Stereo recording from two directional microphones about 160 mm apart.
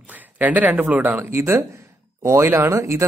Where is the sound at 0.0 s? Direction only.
10° right (ahead or behind).